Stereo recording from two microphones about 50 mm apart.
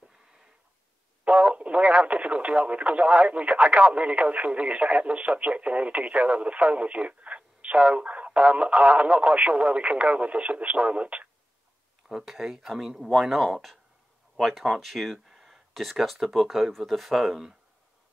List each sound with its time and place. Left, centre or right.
1.2 s speech: right
12.1 s speech: centre